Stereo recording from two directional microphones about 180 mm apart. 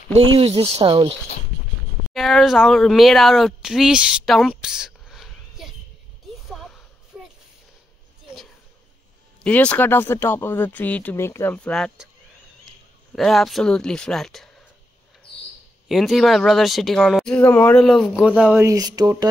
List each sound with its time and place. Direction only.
0.1 s speech: 30° right (ahead or behind)
2.1 s speech: centre (ahead or behind)
6.5 s a sound: centre (ahead or behind)
9.4 s speech: 5° left (ahead or behind)
13.1 s speech: centre (ahead or behind)
15.9 s speech: centre (ahead or behind)
18.6 s speech: 20° right (ahead or behind)